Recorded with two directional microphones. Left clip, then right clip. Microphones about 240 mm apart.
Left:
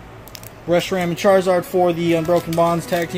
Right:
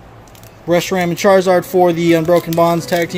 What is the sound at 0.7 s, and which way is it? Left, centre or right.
A man's voice, right.